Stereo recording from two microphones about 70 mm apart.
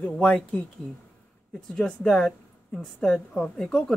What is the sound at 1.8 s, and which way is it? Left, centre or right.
A woman's voice, centre.